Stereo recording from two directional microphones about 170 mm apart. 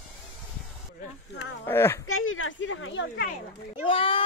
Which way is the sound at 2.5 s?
90° left.